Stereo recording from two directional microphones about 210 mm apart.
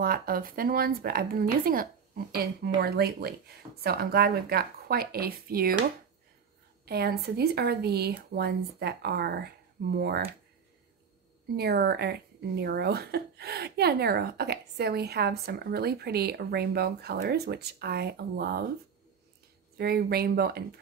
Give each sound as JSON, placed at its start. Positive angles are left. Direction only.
{"t": 0.0, "sound": "speech", "side_deg": -45}
{"t": 6.9, "sound": "speech", "side_deg": -50}
{"t": 11.5, "sound": "speech", "side_deg": -50}
{"t": 19.8, "sound": "speech", "side_deg": -50}